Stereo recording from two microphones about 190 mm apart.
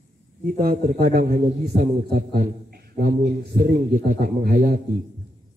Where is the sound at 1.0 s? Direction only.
50° right (ahead or behind).